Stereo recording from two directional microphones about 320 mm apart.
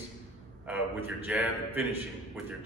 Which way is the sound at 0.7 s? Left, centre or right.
Centre.